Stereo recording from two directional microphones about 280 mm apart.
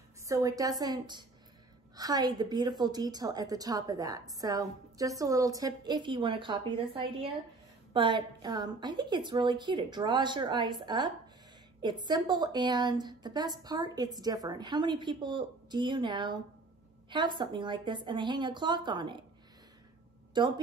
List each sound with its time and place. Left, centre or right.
0.3 s a woman's voice: centre
20.3 s a woman's voice: centre